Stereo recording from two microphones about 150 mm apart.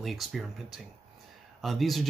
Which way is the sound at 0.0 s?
Centre (ahead or behind).